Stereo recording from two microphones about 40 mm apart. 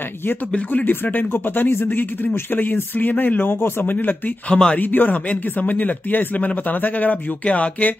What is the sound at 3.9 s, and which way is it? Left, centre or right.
Speech, left.